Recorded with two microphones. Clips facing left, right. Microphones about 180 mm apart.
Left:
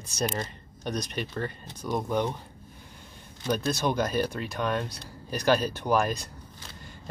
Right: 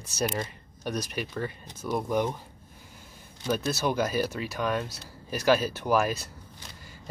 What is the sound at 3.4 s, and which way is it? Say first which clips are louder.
Speech: left 1 dB; 5° right (ahead or behind).